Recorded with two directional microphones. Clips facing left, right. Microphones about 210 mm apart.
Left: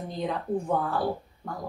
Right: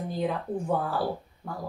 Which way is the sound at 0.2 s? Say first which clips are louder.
Left 1 dB; 5° right (ahead or behind).